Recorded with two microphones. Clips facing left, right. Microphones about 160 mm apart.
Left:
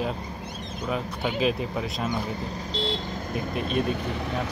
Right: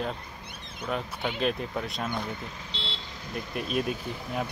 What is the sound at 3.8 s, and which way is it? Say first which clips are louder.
Speech: left 4 dB; 70° left (ahead or behind).